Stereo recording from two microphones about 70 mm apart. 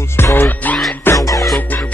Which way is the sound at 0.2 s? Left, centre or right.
Left.